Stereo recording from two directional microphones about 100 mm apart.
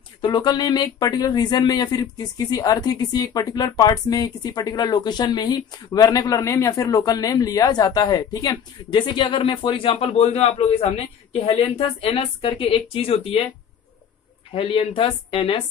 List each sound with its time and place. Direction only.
0.2 s speech: 45° left (ahead or behind); by 13.4 s 80° left
14.5 s speech: 65° left (ahead or behind)